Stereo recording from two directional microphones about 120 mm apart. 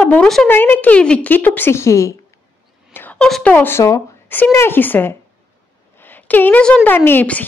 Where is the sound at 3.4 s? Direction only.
15° left (ahead or behind).